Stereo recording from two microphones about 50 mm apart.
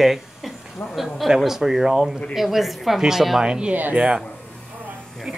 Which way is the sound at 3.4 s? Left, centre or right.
Centre.